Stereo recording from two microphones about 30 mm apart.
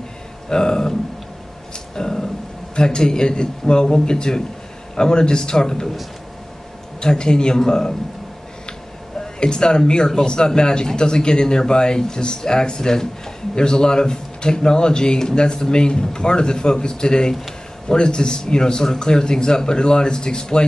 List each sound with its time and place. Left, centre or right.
0.5 s speech: left
2.0 s a man's voice: left
7.0 s speech: left
9.4 s speech: left